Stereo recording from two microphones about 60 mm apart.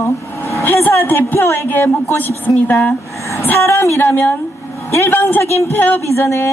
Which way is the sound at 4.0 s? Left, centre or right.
Left.